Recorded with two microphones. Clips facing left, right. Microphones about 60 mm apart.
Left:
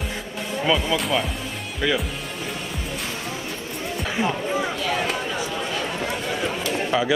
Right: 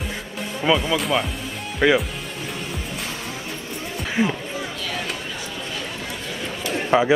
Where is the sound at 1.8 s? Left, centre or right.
Right.